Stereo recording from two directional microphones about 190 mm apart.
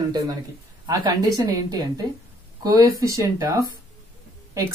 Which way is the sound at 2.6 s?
20° right (ahead or behind).